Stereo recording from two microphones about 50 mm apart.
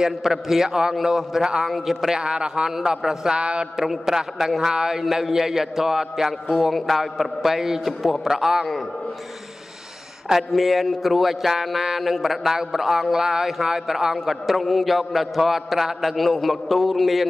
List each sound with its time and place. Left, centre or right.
0.0 s a man's voice: centre
2.1 s a man's voice: centre
3.7 s a man's voice: centre
8.3 s a man's voice: centre
10.2 s a man's voice: centre